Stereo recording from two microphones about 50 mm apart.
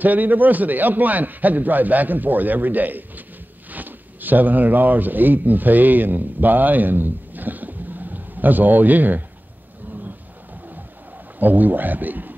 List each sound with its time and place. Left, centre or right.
0.0 s a man's voice: right
11.3 s a man's voice: right